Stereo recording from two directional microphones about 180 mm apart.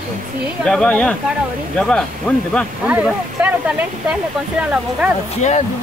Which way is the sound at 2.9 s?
10° right (ahead or behind).